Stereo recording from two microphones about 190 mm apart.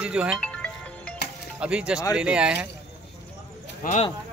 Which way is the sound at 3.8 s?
40° left (ahead or behind).